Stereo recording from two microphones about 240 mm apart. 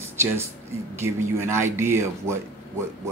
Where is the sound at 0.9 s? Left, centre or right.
Centre.